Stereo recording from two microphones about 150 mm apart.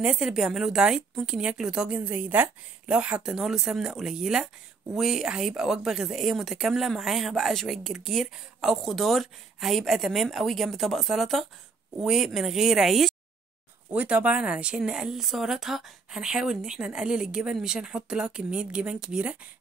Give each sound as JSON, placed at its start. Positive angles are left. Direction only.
{"t": 0.0, "sound": "speech", "side_deg": -5}